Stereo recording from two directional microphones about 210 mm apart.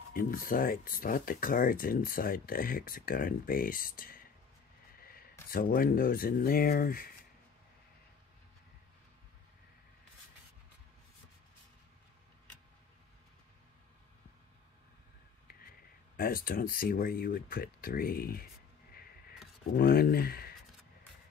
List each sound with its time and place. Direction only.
0.1 s speech: 40° left (ahead or behind)
5.0 s a sound: 45° left (ahead or behind)
5.5 s speech: 45° left (ahead or behind)
16.2 s speech: 45° left (ahead or behind)
19.7 s speech: 45° left (ahead or behind)